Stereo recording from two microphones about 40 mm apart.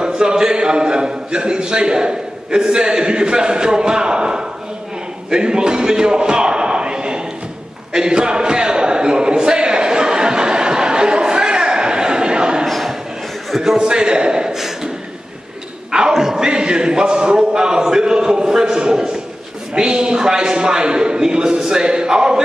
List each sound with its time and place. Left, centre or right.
0.0 s a man's voice: centre
5.3 s a sound: centre
12.6 s a sound: centre
13.6 s a man's voice: centre
13.8 s a man's voice: right
16.1 s a man's voice: centre